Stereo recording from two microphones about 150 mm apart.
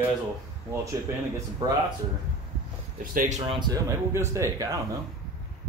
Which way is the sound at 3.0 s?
65° right (ahead or behind).